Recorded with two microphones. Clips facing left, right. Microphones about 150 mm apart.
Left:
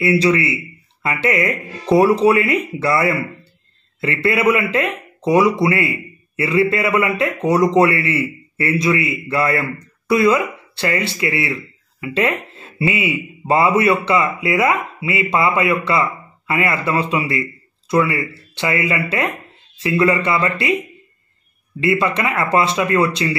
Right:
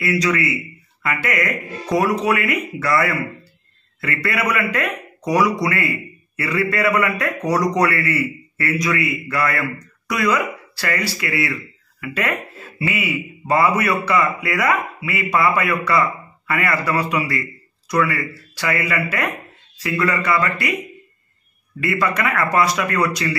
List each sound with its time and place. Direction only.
0.0 s speech: 30° left (ahead or behind)
21.7 s speech: 25° left (ahead or behind)